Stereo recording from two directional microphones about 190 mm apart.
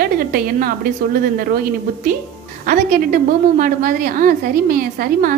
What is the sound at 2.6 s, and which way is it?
A woman's voice, 45° right (ahead or behind).